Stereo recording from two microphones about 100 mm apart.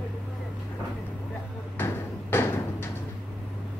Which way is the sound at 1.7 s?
25° left (ahead or behind).